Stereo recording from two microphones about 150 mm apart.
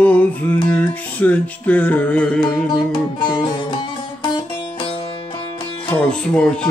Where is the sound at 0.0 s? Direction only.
10° left (ahead or behind).